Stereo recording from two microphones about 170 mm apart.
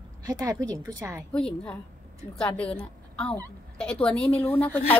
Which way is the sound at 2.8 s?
5° left (ahead or behind).